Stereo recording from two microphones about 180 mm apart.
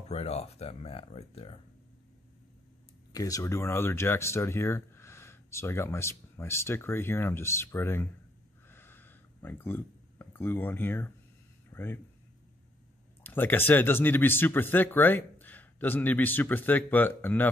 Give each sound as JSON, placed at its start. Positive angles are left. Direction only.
{"t": 0.1, "sound": "speech", "side_deg": 35}
{"t": 3.1, "sound": "speech", "side_deg": 20}
{"t": 8.6, "sound": "a sound", "side_deg": 10}
{"t": 11.7, "sound": "speech", "side_deg": 10}
{"t": 13.2, "sound": "speech", "side_deg": 10}